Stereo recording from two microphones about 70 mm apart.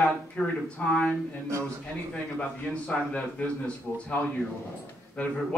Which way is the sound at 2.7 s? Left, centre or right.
Centre.